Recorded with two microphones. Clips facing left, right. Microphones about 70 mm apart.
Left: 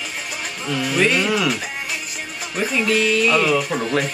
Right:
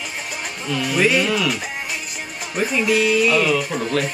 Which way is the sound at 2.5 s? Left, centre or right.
Centre.